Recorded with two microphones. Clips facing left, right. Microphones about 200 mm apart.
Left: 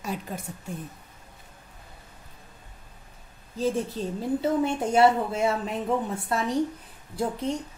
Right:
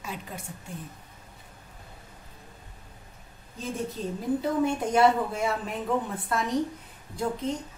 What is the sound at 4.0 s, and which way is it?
A woman's voice, 30° left (ahead or behind).